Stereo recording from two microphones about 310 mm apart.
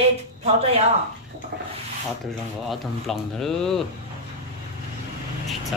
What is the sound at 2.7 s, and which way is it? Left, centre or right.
Speech, centre.